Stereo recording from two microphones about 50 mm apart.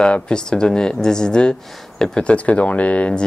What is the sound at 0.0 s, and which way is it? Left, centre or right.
Speech, centre.